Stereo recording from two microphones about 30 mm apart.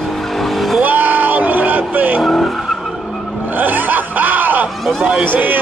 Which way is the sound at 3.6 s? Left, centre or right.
Right.